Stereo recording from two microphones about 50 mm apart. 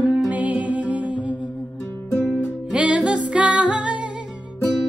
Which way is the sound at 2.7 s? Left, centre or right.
Right.